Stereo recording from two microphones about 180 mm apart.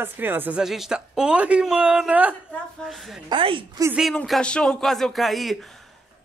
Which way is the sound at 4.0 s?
Centre (ahead or behind).